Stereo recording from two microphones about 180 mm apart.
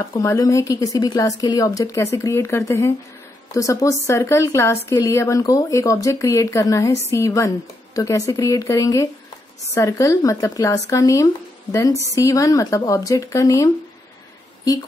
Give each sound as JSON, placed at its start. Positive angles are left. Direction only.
{"t": 0.2, "sound": "speech", "side_deg": 15}